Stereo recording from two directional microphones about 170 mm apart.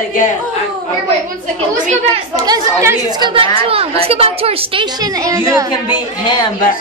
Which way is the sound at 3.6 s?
35° right (ahead or behind).